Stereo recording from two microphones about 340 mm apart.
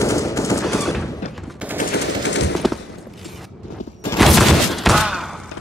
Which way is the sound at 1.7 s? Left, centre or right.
Left.